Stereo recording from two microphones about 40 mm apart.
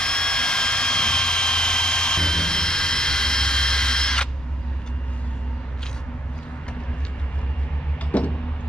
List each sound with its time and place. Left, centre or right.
0.0 s jet engine: left
8.1 s vehicle: left